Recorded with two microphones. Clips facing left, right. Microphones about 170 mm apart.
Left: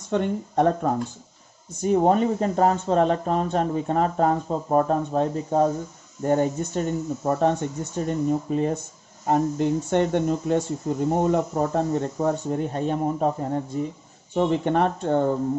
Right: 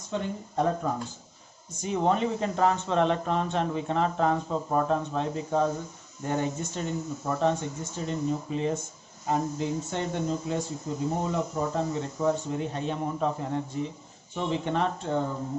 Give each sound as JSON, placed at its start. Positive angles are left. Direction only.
{"t": 0.1, "sound": "speech", "side_deg": 60}
{"t": 1.8, "sound": "speech", "side_deg": 45}